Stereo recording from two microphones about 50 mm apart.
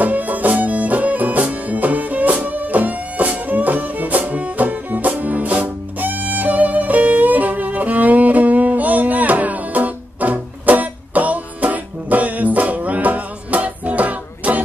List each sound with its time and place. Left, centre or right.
0.0 s music: right